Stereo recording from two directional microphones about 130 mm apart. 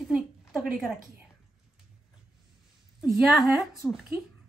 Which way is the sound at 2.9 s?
Centre (ahead or behind).